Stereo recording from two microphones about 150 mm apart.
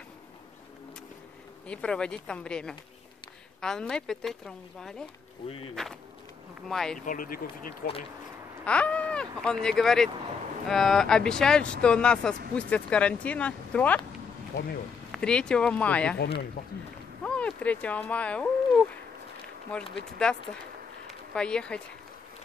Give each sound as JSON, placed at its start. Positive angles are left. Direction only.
{"t": 1.7, "sound": "speech", "side_deg": 5}
{"t": 7.1, "sound": "speech", "side_deg": 70}
{"t": 8.6, "sound": "speech", "side_deg": 10}
{"t": 15.0, "sound": "speech", "side_deg": 5}
{"t": 16.6, "sound": "speech", "side_deg": 65}
{"t": 17.2, "sound": "speech", "side_deg": 10}